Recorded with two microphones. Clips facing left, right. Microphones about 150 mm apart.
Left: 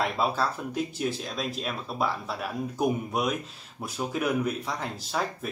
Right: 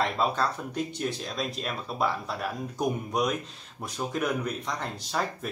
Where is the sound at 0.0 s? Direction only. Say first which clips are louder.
Even; 5° left (ahead or behind).